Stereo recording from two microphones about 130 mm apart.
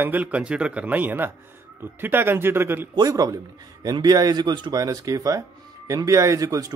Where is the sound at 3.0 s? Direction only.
30° right (ahead or behind).